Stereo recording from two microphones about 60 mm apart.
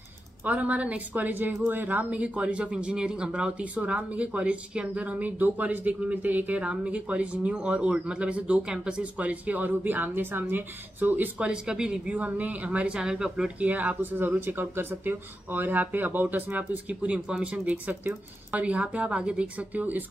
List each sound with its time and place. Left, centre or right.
0.5 s speech: right
9.2 s speech: right
11.4 s speech: centre
12.2 s speech: right
13.6 s speech: right